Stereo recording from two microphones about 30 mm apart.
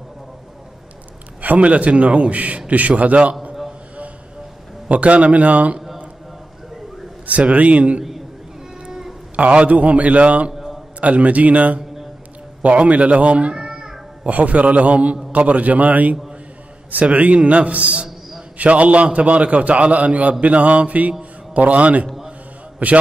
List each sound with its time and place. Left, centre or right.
1.4 s a man's voice: right
4.8 s a man's voice: right
7.2 s a man's voice: right
9.4 s a man's voice: right
10.5 s a sound: centre
11.0 s a man's voice: right
12.6 s a man's voice: right
13.6 s a sound: centre
14.3 s a man's voice: right
17.0 s a man's voice: right
21.2 s music: right
22.0 s a sound: centre
22.8 s a man's voice: right